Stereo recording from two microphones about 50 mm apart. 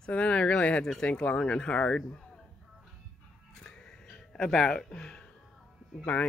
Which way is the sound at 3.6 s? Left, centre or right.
Centre.